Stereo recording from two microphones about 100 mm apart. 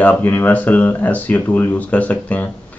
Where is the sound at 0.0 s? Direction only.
15° left (ahead or behind).